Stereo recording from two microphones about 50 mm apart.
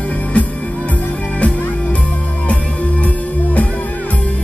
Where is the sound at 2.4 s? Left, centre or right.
Left.